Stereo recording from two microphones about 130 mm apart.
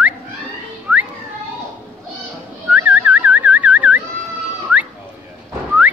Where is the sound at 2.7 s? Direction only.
10° right (ahead or behind).